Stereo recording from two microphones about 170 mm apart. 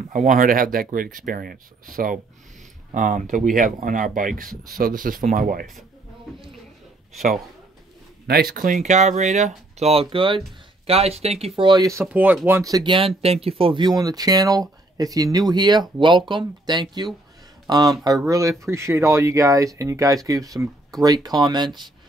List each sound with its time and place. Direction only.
0.1 s speech: 50° right (ahead or behind)
8.3 s speech: 60° right (ahead or behind); by 12.0 s 20° right (ahead or behind)
12.0 s speech: 10° right (ahead or behind)